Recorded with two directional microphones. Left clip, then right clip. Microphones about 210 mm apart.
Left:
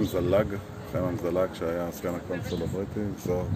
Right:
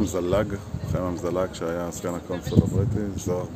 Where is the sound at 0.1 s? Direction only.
15° right (ahead or behind).